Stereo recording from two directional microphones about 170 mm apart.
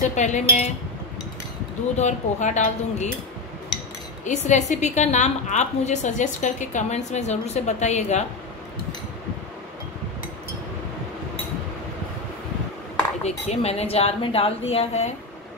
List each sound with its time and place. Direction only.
0.0 s a woman's voice: 45° left (ahead or behind)
2.0 s a woman's voice: 45° left (ahead or behind)
4.2 s a woman's voice: 45° left (ahead or behind)
13.2 s speech: 40° left (ahead or behind)